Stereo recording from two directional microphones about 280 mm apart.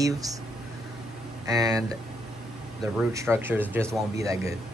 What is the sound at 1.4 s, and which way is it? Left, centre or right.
Speech, centre.